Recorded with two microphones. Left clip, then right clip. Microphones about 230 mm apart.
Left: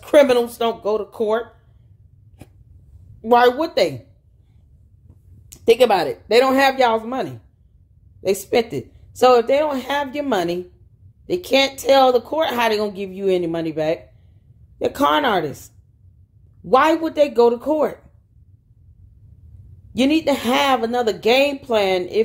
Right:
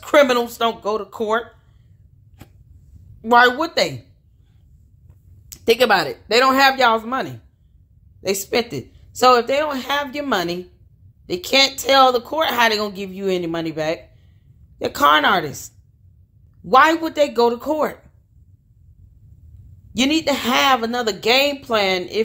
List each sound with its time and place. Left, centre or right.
0.0 s a woman's voice: centre
2.4 s a sound: centre
3.2 s a woman's voice: centre
5.5 s a woman's voice: centre
16.6 s a woman's voice: centre
19.9 s a woman's voice: centre